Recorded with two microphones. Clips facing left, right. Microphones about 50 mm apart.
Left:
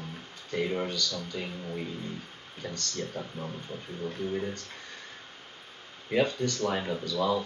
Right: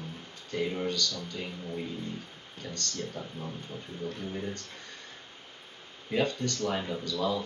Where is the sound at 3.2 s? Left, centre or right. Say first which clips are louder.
Left 2 dB; left.